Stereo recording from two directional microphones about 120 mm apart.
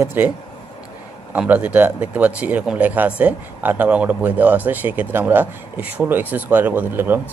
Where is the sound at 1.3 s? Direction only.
15° right (ahead or behind).